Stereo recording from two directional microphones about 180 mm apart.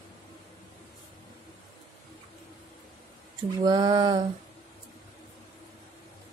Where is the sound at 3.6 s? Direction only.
25° right (ahead or behind).